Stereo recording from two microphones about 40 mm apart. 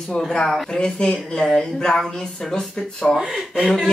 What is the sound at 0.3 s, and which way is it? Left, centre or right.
A woman's voice, centre.